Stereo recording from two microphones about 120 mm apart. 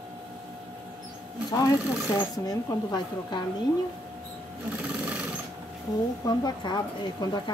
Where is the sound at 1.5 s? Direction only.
30° left (ahead or behind).